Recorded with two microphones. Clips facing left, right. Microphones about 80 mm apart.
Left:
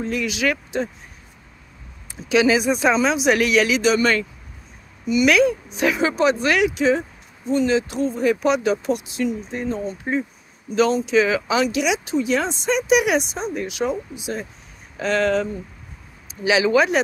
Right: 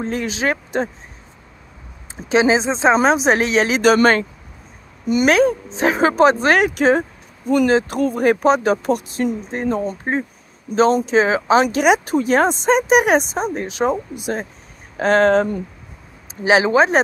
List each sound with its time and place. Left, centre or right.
0.0 s speech: right
2.2 s speech: right
2.9 s speech: right
3.8 s speech: right
14.1 s speech: right
16.4 s speech: right